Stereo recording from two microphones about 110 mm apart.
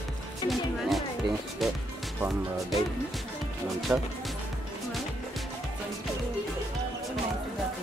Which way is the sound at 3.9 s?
20° right (ahead or behind).